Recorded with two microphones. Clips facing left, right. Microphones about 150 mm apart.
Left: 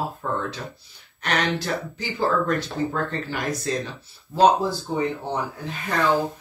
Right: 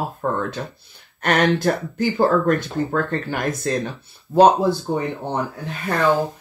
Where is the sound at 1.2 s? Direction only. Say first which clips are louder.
Right 7 dB; 50° right (ahead or behind).